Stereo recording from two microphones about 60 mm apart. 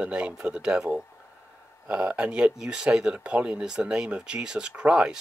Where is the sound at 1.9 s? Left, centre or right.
Right.